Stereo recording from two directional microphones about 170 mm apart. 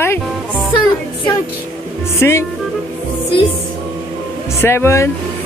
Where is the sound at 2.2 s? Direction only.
15° left (ahead or behind).